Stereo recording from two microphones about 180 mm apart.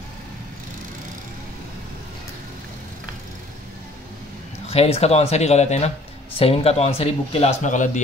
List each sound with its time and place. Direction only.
4.6 s speech: 35° left (ahead or behind)